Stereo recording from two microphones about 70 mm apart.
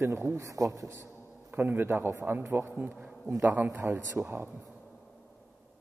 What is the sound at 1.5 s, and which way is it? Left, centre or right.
A man's voice, right.